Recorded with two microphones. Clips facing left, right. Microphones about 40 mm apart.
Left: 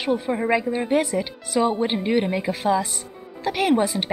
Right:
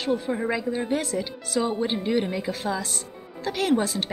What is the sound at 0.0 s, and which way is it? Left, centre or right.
Speech, left.